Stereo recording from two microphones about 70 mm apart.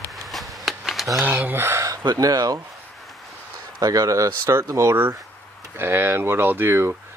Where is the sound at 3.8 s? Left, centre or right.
Right.